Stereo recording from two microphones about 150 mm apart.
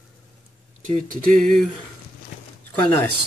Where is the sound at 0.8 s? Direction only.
55° right (ahead or behind).